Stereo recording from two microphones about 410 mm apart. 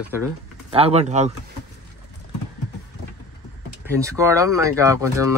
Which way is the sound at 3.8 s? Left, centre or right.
Centre.